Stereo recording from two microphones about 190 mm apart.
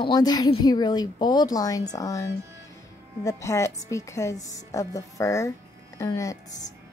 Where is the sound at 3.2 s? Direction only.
15° left (ahead or behind).